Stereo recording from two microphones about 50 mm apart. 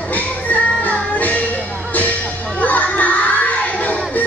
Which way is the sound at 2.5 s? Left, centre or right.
Left.